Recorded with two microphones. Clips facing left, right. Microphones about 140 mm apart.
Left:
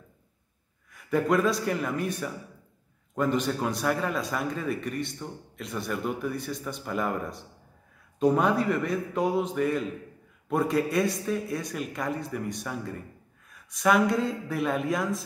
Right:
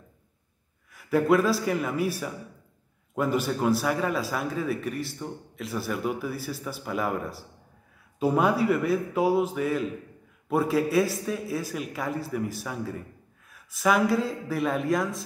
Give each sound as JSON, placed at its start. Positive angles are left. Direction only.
{"t": 0.9, "sound": "a man's voice", "side_deg": 0}